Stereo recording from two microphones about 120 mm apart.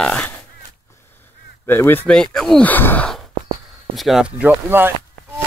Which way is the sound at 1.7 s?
20° left (ahead or behind).